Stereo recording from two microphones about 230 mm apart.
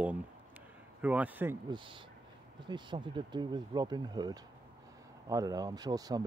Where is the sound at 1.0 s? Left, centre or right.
Centre.